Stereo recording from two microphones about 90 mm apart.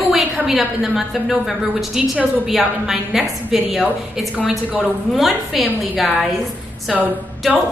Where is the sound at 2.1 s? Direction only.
15° right (ahead or behind).